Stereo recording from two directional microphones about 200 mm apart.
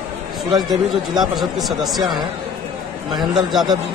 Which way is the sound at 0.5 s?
20° right (ahead or behind).